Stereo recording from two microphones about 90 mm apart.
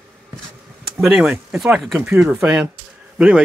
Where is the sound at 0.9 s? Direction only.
10° right (ahead or behind).